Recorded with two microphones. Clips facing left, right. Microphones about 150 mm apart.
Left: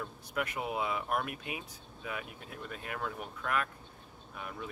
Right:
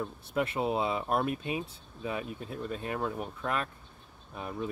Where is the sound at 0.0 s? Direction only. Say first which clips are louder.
Right 5 dB; 25° right (ahead or behind).